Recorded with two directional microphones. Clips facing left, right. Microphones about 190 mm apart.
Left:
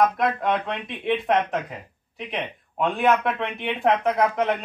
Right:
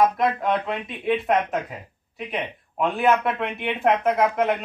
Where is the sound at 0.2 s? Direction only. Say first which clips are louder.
Right 1 dB; centre (ahead or behind).